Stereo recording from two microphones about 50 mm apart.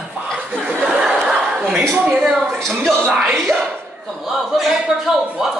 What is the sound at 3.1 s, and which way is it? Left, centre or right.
A man's voice, centre.